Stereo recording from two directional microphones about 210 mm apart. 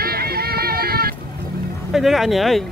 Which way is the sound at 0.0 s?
45° right (ahead or behind).